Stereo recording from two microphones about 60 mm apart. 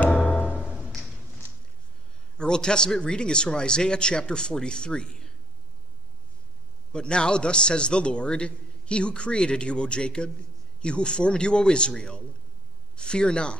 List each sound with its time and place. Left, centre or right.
0.0 s music: left
2.3 s a man's voice: centre
6.9 s a man's voice: centre